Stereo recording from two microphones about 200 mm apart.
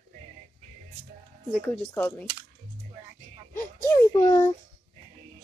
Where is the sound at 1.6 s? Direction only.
10° left (ahead or behind).